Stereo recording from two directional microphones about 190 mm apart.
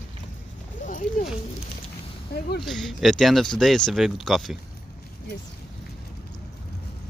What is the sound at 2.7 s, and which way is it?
Speech, centre (ahead or behind).